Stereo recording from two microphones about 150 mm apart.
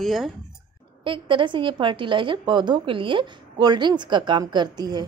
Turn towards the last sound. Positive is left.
turn(degrees=-25)  # may be behind; listen again after turning